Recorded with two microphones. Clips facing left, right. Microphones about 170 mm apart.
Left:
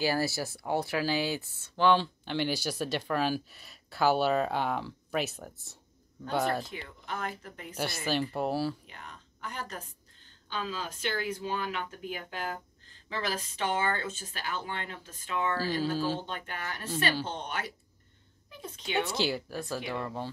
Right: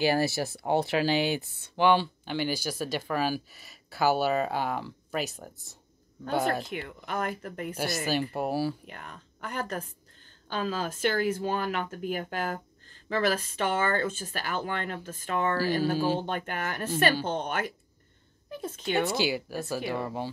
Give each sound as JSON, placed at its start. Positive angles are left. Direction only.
{"t": 0.0, "sound": "speech", "side_deg": -20}
{"t": 6.7, "sound": "speech", "side_deg": -50}
{"t": 8.1, "sound": "speech", "side_deg": -10}
{"t": 8.8, "sound": "speech", "side_deg": -55}
{"t": 19.1, "sound": "speech", "side_deg": -5}